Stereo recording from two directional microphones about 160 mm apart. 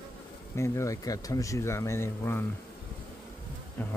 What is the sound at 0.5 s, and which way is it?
Speech, 20° left (ahead or behind).